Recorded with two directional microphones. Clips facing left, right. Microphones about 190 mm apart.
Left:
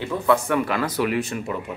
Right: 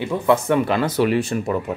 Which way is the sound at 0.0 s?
20° right (ahead or behind).